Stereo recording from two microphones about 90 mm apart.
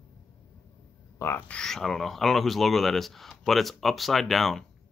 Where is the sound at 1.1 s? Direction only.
30° left (ahead or behind).